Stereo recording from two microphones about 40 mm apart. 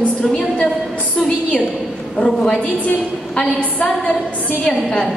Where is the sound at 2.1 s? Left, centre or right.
Centre.